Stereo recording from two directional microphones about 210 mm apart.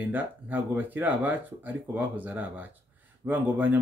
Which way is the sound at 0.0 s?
10° right (ahead or behind).